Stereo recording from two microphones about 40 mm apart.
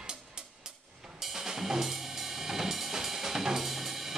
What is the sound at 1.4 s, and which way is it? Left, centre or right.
Drum kit, centre.